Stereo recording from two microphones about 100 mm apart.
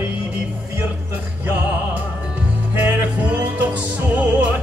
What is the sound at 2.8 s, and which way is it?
Music, 20° right (ahead or behind).